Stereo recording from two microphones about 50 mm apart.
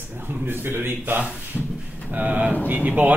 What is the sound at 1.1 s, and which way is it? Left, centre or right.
Speech, right.